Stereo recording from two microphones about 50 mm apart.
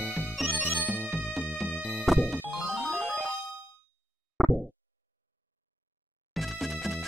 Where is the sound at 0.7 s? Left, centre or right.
Left.